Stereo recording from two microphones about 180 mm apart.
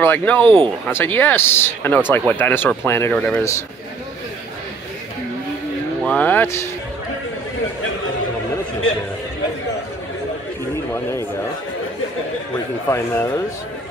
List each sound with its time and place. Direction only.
0.0 s speech: 10° left (ahead or behind)
6.0 s speech: 10° left (ahead or behind)
10.9 s a man's voice: 15° left (ahead or behind)
12.5 s speech: 15° left (ahead or behind)